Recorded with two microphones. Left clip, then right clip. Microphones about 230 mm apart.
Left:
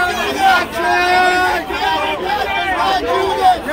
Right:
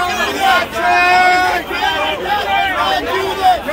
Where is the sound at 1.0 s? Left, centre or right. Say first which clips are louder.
Right 2 dB; centre.